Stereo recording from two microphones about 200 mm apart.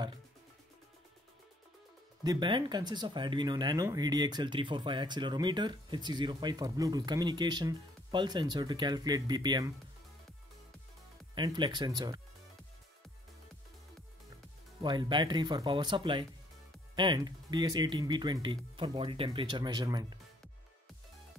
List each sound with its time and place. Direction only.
2.2 s speech: 25° right (ahead or behind)
11.3 s speech: 25° right (ahead or behind)
14.8 s speech: 25° right (ahead or behind)